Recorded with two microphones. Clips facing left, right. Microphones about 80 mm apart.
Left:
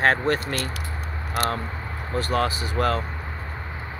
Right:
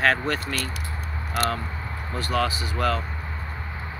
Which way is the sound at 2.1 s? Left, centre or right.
Left.